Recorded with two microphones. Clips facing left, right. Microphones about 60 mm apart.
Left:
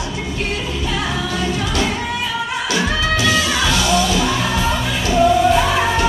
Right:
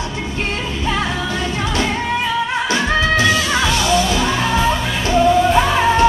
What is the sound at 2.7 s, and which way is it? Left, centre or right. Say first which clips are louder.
Music: right 1 dB; right.